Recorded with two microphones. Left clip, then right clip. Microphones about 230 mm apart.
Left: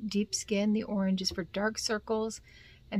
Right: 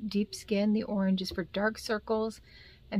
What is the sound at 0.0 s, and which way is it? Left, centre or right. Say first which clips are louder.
Speech: left 1 dB; centre.